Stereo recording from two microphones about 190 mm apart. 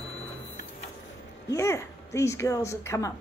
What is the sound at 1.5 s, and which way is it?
Speech, 15° left (ahead or behind).